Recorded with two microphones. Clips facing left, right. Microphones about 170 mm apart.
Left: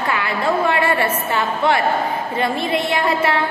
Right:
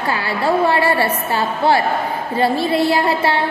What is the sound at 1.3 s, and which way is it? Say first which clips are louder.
A woman's voice: right 2 dB; 30° right (ahead or behind).